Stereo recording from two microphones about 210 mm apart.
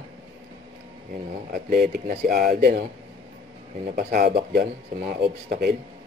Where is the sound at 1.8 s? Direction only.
45° right (ahead or behind).